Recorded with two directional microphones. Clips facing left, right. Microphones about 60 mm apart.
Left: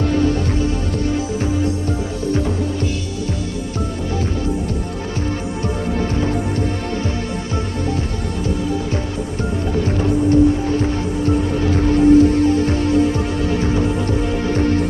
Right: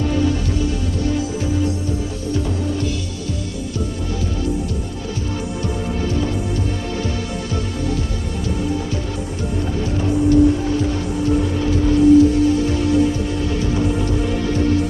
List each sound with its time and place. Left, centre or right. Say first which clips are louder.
11.7 s music: even; left